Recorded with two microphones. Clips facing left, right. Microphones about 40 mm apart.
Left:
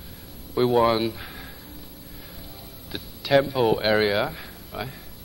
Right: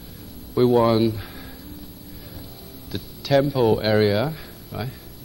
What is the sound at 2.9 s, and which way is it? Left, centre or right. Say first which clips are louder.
Speech: even; centre.